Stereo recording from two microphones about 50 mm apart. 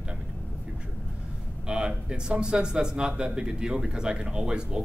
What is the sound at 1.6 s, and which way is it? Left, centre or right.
Speech, centre.